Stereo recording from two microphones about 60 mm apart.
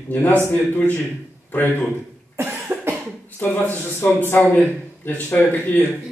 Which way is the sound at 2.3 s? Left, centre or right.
Right.